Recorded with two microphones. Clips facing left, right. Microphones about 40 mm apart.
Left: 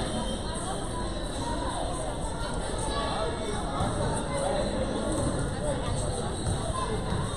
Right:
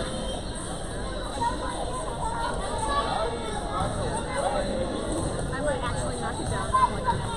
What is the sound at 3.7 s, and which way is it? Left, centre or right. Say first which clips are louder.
Music: right 2 dB; centre.